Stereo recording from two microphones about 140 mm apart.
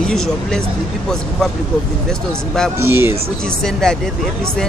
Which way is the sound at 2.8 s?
15° right (ahead or behind).